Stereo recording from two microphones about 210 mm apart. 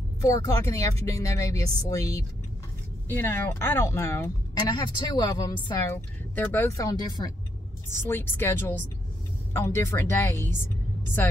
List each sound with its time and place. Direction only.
0.2 s speech: 15° left (ahead or behind)